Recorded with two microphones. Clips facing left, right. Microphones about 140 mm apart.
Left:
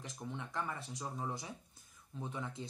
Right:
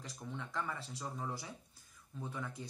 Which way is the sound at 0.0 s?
20° left (ahead or behind).